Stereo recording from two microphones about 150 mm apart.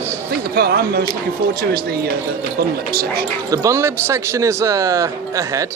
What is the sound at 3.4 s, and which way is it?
Speech, 20° right (ahead or behind).